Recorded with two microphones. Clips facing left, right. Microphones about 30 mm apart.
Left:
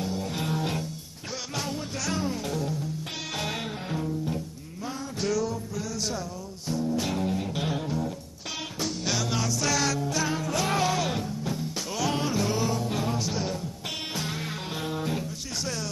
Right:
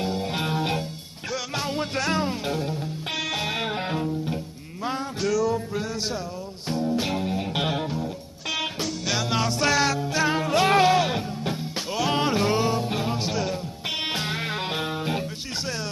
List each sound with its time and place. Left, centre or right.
0.0 s music: right
1.8 s music: right
3.3 s music: centre
3.6 s music: right
5.2 s music: centre
5.5 s music: right
7.4 s music: right
8.5 s music: centre
9.1 s music: right
9.4 s music: right
12.2 s music: right
14.1 s music: right